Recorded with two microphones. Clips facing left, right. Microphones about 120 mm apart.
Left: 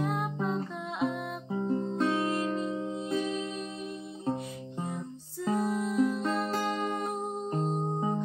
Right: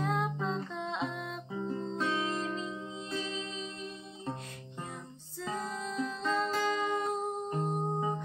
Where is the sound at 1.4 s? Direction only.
40° left (ahead or behind).